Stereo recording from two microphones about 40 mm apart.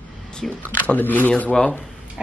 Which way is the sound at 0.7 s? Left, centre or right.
Left.